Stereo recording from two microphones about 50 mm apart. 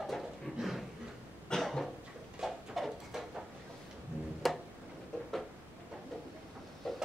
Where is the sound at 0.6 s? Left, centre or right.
Centre.